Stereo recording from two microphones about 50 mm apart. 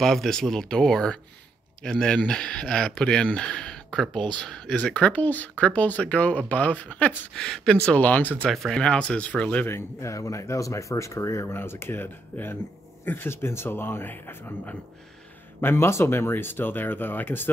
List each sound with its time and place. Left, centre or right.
0.0 s speech: centre; by 7.2 s left
7.3 s speech: centre
7.9 s speech: left
8.5 s speech: centre
8.8 s speech: left
9.7 s speech: left
11.5 s speech: left
15.6 s speech: left